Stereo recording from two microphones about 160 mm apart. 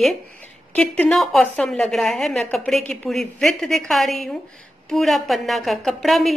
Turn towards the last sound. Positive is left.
turn(degrees=0)  # may be behind; listen again after turning